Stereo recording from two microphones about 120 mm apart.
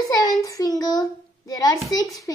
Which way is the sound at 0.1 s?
30° left (ahead or behind).